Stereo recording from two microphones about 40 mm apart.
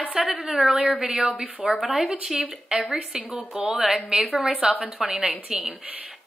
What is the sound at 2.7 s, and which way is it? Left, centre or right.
Speech, right.